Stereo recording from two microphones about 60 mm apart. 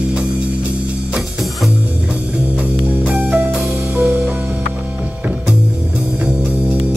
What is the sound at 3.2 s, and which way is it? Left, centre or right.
Music, centre.